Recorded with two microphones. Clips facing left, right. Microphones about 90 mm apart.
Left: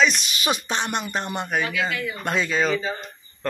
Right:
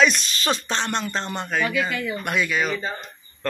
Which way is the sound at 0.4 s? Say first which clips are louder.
Even; 15° left (ahead or behind).